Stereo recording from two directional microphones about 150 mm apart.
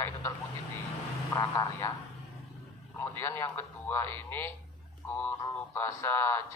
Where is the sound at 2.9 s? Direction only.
15° left (ahead or behind).